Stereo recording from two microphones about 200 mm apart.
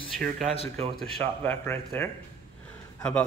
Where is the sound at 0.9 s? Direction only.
5° left (ahead or behind).